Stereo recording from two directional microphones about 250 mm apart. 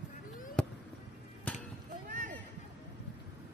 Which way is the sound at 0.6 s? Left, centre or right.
Centre.